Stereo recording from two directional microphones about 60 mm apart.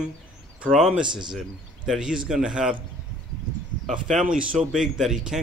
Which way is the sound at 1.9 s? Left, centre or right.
Centre.